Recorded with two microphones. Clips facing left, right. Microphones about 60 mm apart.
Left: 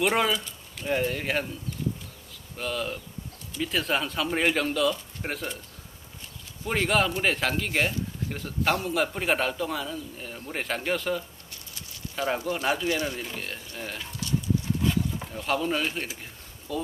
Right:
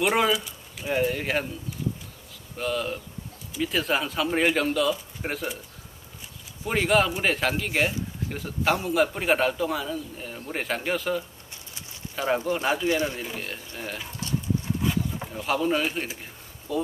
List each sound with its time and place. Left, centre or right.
0.0 s a man's voice: centre
2.5 s a man's voice: centre
6.6 s a man's voice: centre
12.8 s speech: centre
13.2 s a man's voice: centre
14.8 s a sound: centre